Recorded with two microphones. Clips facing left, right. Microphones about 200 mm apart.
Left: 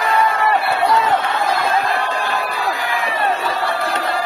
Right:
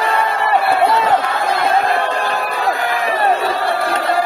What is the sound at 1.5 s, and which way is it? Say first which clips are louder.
Music: right 4 dB; 60° right (ahead or behind).